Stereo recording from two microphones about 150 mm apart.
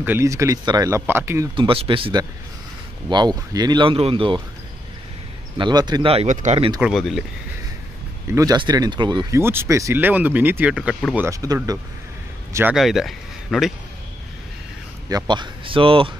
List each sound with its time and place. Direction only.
0.0 s speech: 15° right (ahead or behind)
1.5 s speech: 35° right (ahead or behind)
5.6 s speech: 30° right (ahead or behind)
6.1 s speech: 55° right (ahead or behind)
6.8 s speech: centre (ahead or behind)
8.4 s speech: 25° right (ahead or behind)
9.4 s speech: 15° right (ahead or behind)
11.1 s speech: 20° right (ahead or behind)
12.7 s speech: centre (ahead or behind)
15.0 s speech: 25° right (ahead or behind)